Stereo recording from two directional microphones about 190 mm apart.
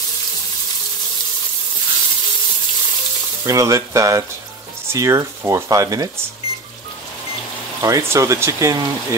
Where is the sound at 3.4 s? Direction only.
15° right (ahead or behind).